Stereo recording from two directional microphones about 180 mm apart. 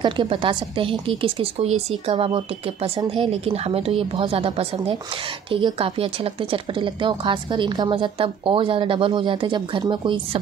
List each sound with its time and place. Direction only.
0.0 s a woman's voice: 30° right (ahead or behind)